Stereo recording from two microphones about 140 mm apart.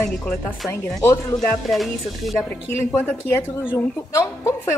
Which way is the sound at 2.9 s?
15° left (ahead or behind).